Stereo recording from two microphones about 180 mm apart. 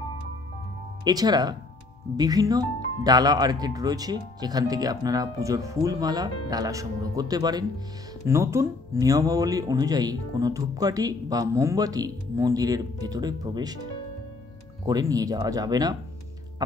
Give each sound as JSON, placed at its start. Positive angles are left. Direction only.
{"t": 1.0, "sound": "speech", "side_deg": -20}
{"t": 14.9, "sound": "speech", "side_deg": -20}